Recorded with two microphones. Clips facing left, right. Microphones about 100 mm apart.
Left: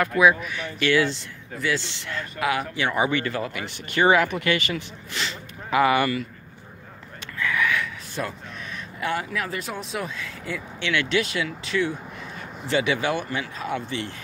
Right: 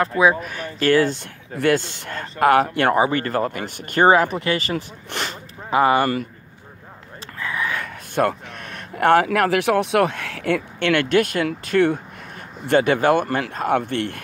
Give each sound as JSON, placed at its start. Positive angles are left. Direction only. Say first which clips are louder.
{"t": 0.0, "sound": "speech", "louder": "right 1 dB", "side_deg": -30}
{"t": 0.4, "sound": "speech", "louder": "right 3 dB", "side_deg": -45}
{"t": 3.0, "sound": "speech", "louder": "right 5 dB", "side_deg": -40}
{"t": 5.1, "sound": "speech", "louder": "right 3 dB", "side_deg": -50}
{"t": 5.7, "sound": "speech", "louder": "right 3 dB", "side_deg": -35}
{"t": 7.3, "sound": "a sound", "louder": "left 1 dB", "side_deg": -35}
{"t": 7.8, "sound": "speech", "louder": "right 9 dB", "side_deg": -60}